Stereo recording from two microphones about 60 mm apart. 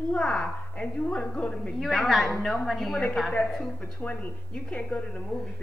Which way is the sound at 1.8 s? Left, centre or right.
Centre.